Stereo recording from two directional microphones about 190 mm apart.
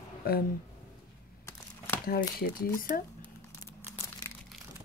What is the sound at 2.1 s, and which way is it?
Speech, 50° left (ahead or behind).